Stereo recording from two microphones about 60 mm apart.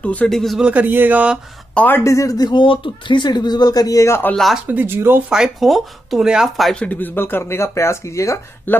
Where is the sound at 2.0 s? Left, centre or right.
Left.